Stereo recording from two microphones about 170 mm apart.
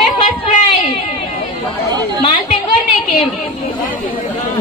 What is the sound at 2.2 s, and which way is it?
Speech, 35° left (ahead or behind).